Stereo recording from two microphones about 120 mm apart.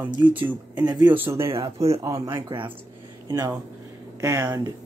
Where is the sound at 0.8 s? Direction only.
35° right (ahead or behind).